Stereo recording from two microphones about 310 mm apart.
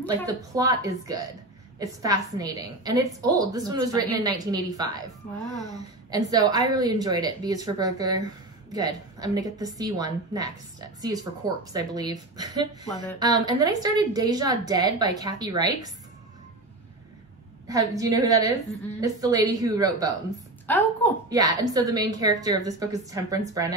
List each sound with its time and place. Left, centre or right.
0.1 s a woman's voice: centre
17.6 s a woman's voice: centre
20.6 s a woman's voice: centre
21.3 s a woman's voice: centre